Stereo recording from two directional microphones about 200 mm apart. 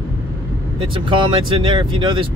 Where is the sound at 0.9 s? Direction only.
25° right (ahead or behind).